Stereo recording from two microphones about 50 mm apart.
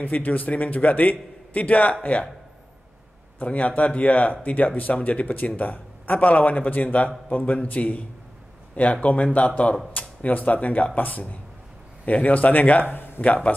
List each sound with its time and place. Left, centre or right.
0.0 s speech: left
3.3 s speech: left
9.0 s speech: left
12.9 s a sound: left
13.2 s speech: left